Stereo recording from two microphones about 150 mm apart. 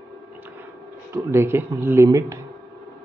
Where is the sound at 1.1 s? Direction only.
15° right (ahead or behind).